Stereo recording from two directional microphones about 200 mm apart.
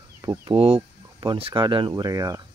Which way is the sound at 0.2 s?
20° right (ahead or behind).